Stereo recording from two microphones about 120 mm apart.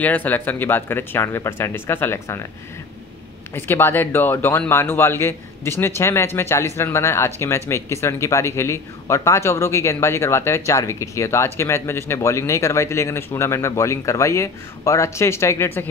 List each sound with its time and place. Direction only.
0.0 s speech: 15° left (ahead or behind)
3.5 s speech: 20° left (ahead or behind)